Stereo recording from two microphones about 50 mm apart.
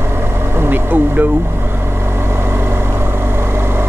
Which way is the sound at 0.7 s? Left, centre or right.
Right.